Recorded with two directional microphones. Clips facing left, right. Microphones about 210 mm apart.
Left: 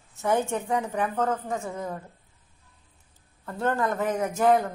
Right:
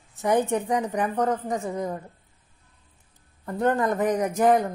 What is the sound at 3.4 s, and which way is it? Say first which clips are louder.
A woman's voice: right 3 dB; 15° right (ahead or behind).